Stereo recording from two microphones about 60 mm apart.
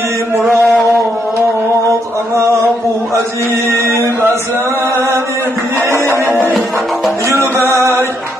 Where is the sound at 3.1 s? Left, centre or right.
Right.